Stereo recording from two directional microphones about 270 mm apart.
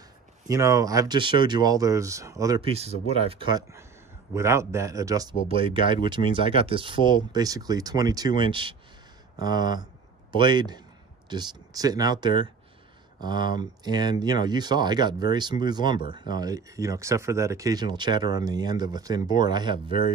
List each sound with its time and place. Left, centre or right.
0.5 s speech: centre